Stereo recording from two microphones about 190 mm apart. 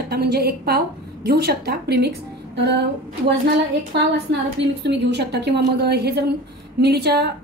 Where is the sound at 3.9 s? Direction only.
60° right (ahead or behind).